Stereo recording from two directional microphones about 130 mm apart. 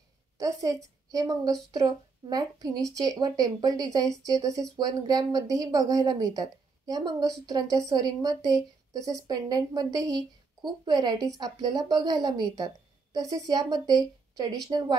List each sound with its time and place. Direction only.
0.4 s a woman's voice: 25° right (ahead or behind)